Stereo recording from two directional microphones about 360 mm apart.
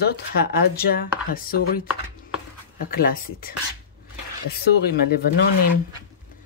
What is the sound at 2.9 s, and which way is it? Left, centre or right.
Speech, left.